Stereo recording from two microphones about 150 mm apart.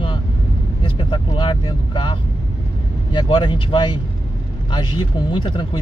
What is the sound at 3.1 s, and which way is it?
Speech, 30° left (ahead or behind).